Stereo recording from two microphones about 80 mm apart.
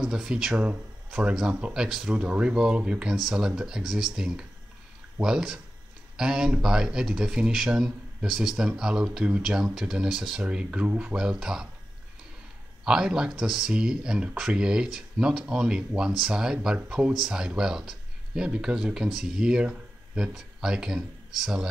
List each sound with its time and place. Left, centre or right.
0.0 s speech: centre
12.8 s speech: centre